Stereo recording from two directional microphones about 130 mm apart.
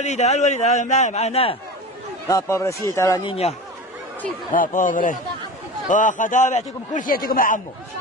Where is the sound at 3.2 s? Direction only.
50° left (ahead or behind).